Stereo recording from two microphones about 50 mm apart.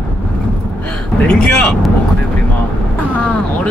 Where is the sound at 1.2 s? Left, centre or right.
Centre.